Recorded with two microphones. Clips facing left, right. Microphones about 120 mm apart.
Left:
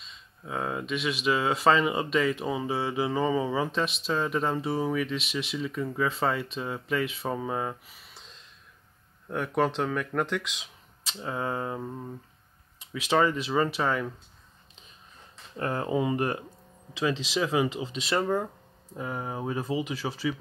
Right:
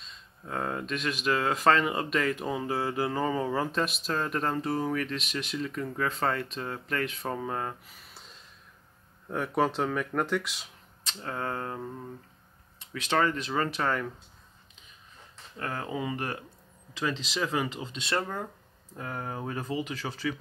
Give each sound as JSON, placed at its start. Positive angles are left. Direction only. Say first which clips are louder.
{"t": 0.0, "sound": "speech", "louder": "left 1 dB", "side_deg": 0}
{"t": 9.3, "sound": "speech", "louder": "left 1 dB", "side_deg": -5}
{"t": 11.1, "sound": "speech", "louder": "left 2 dB", "side_deg": 10}
{"t": 12.9, "sound": "speech", "louder": "left 3 dB", "side_deg": 10}
{"t": 15.5, "sound": "speech", "louder": "left 6 dB", "side_deg": 25}
{"t": 17.0, "sound": "speech", "louder": "left 3 dB", "side_deg": 10}